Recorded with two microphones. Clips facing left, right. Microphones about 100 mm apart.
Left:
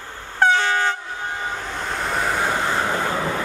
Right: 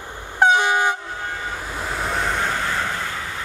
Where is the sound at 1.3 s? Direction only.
20° left (ahead or behind).